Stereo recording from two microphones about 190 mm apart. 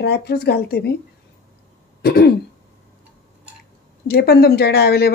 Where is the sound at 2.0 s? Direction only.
55° left (ahead or behind).